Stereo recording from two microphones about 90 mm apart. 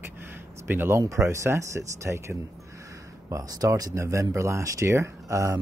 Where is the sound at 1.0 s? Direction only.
35° right (ahead or behind).